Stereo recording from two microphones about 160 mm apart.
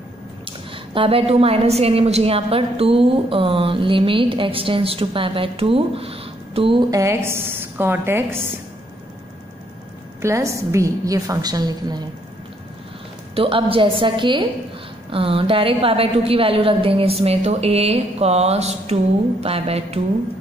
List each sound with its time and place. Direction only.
0.5 s a woman's voice: 35° right (ahead or behind); by 8.4 s 15° right (ahead or behind)
10.2 s a woman's voice: 20° right (ahead or behind)
13.3 s a woman's voice: 35° right (ahead or behind)